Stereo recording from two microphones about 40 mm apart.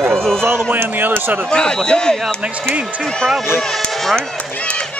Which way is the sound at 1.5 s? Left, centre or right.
Centre.